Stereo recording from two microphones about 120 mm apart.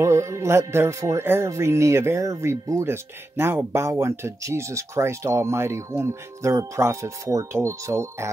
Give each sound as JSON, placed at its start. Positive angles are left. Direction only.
{"t": 0.0, "sound": "speech", "side_deg": -25}